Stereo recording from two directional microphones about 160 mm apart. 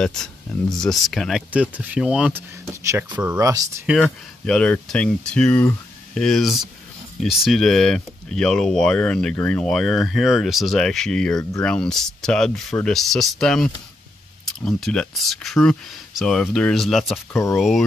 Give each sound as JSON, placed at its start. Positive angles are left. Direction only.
{"t": 0.0, "sound": "speech", "side_deg": 5}
{"t": 1.5, "sound": "speech", "side_deg": -10}
{"t": 2.6, "sound": "speech", "side_deg": -20}
{"t": 3.3, "sound": "speech", "side_deg": -20}
{"t": 4.0, "sound": "speech", "side_deg": 5}
{"t": 17.3, "sound": "speech", "side_deg": 15}
{"t": 17.6, "sound": "speech", "side_deg": 0}